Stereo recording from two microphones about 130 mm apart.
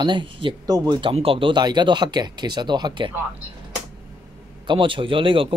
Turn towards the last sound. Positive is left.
turn(degrees=-40)  # may be behind; listen again after turning